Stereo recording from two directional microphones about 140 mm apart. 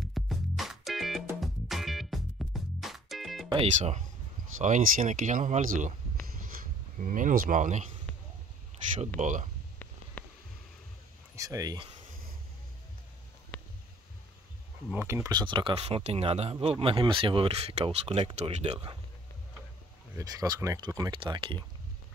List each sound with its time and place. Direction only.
0.0 s music: centre (ahead or behind)
3.4 s speech: 40° right (ahead or behind)
4.6 s speech: 65° right (ahead or behind)
6.4 s speech: 75° right (ahead or behind)
9.1 s speech: 65° right (ahead or behind)
10.2 s a sound: 10° left (ahead or behind)
11.3 s speech: 25° right (ahead or behind)
14.9 s speech: 10° right (ahead or behind); by 18.8 s 50° right (ahead or behind)
20.2 s speech: 25° right (ahead or behind)